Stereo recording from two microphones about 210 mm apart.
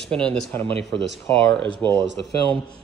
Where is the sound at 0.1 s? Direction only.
5° left (ahead or behind).